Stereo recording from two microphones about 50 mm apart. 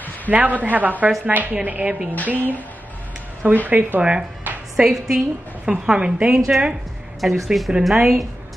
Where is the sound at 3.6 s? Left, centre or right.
Right.